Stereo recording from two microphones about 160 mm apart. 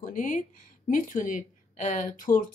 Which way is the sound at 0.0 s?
55° left (ahead or behind).